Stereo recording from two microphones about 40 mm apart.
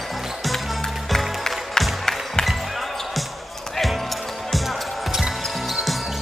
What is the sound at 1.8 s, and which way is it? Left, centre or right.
Music, centre.